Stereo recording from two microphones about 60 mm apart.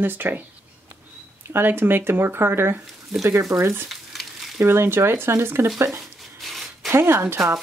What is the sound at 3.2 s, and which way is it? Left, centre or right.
Speech, right.